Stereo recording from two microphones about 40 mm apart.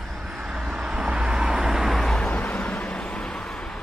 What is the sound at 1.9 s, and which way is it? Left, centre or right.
Vehicle, centre.